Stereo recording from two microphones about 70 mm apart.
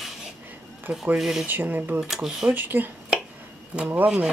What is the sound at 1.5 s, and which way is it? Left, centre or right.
Speech, right.